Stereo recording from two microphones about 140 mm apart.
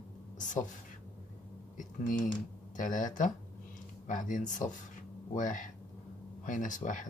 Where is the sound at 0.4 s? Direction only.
65° left (ahead or behind).